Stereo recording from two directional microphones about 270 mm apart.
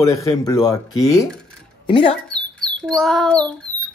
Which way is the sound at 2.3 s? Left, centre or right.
Centre.